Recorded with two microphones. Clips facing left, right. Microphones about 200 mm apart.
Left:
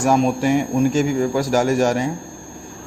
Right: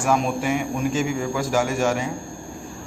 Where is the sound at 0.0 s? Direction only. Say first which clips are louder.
Left 5 dB; 40° left (ahead or behind).